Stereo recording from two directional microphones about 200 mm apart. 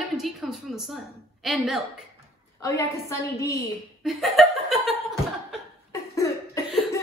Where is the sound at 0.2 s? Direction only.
Centre (ahead or behind).